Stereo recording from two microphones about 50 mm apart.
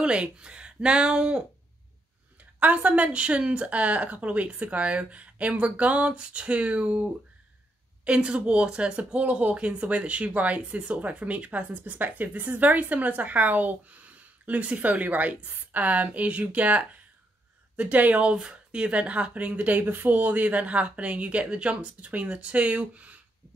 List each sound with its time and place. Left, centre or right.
0.0 s speech: centre
2.6 s a woman's voice: right